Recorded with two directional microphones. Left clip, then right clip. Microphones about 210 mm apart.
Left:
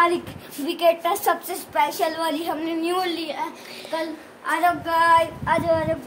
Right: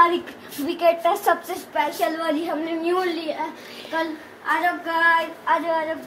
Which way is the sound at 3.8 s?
15° left (ahead or behind).